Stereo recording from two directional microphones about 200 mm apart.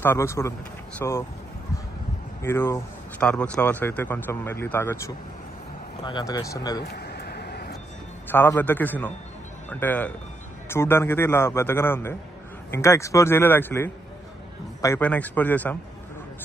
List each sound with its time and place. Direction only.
0.0 s speech: 10° left (ahead or behind)
2.4 s speech: 10° left (ahead or behind)
6.0 s speech: 20° left (ahead or behind)
6.8 s a sound: 55° left (ahead or behind)
8.3 s speech: 10° left (ahead or behind)